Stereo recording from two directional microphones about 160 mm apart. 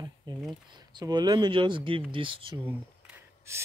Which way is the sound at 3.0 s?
15° right (ahead or behind).